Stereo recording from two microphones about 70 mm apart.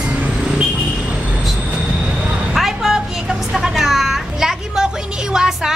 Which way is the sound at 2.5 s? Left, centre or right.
Centre.